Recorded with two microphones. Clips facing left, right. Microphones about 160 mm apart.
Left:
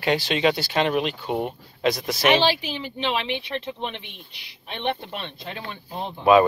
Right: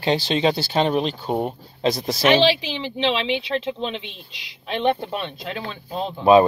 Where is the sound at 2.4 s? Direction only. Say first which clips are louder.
Right 4 dB; 90° right.